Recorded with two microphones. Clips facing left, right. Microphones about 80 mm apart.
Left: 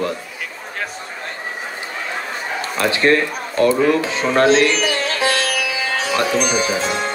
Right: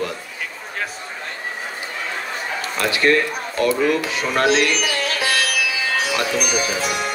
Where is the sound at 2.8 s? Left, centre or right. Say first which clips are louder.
Left 2 dB; left.